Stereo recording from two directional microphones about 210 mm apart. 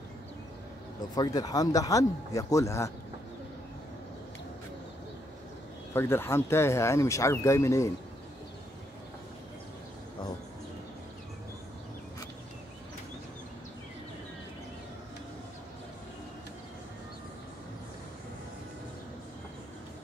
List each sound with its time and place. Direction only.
1.1 s speech: 20° left (ahead or behind)
5.9 s speech: 10° left (ahead or behind)